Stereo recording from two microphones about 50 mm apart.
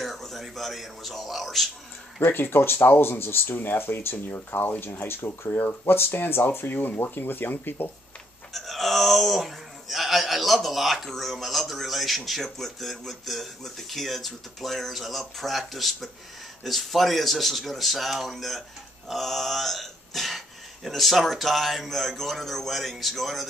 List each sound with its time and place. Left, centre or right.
0.0 s a sound: centre
2.2 s speech: left
8.5 s speech: centre